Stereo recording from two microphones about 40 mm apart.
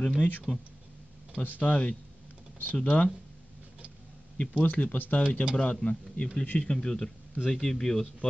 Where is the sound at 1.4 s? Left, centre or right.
Left.